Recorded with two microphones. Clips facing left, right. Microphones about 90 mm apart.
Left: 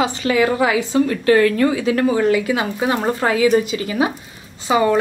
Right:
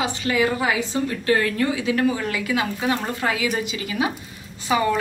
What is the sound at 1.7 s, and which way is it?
Speech, 40° left (ahead or behind).